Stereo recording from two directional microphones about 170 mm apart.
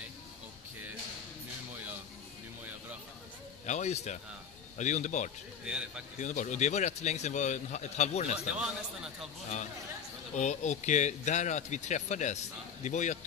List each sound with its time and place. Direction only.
3.6 s speech: 40° left (ahead or behind)
5.7 s a man's voice: 5° right (ahead or behind)
6.2 s speech: 45° left (ahead or behind)
8.5 s a man's voice: 5° right (ahead or behind)
10.3 s speech: 45° left (ahead or behind)